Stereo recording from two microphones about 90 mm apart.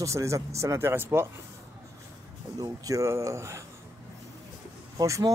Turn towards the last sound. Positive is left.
turn(degrees=-40)  # may be behind; listen again after turning